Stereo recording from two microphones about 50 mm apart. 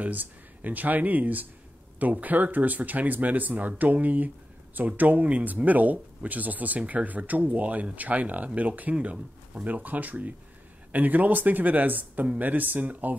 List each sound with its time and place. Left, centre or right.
0.0 s speech: right